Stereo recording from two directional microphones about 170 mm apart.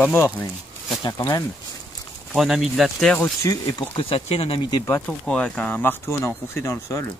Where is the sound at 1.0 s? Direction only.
20° left (ahead or behind).